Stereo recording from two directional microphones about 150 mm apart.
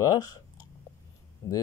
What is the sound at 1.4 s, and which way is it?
Speech, 20° left (ahead or behind).